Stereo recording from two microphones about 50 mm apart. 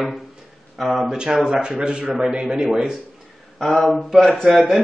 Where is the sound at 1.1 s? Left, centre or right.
Centre.